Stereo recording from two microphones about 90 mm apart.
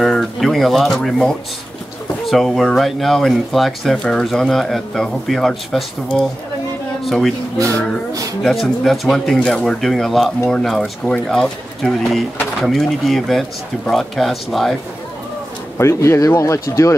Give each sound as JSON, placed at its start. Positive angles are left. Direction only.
{"t": 0.0, "sound": "speech", "side_deg": 0}
{"t": 7.5, "sound": "speech", "side_deg": -35}
{"t": 8.4, "sound": "speech", "side_deg": 0}
{"t": 15.8, "sound": "speech", "side_deg": 30}